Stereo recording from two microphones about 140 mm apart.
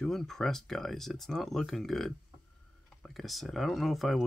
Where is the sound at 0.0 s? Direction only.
5° left (ahead or behind).